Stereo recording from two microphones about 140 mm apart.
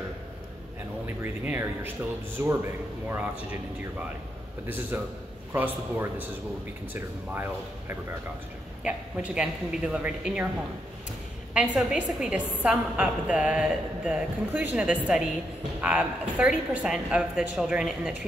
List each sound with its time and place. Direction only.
1.0 s a woman's voice: 15° right (ahead or behind)
4.9 s a woman's voice: 15° right (ahead or behind)
8.8 s a woman's voice: 5° right (ahead or behind)
11.5 s a woman's voice: 10° right (ahead or behind)